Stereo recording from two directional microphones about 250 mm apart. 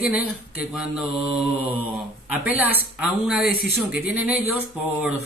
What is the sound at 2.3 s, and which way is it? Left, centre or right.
Speech, centre.